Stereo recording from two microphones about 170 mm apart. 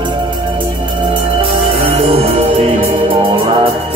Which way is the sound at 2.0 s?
35° right (ahead or behind).